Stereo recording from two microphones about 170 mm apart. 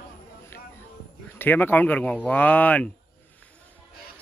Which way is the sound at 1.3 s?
10° left (ahead or behind).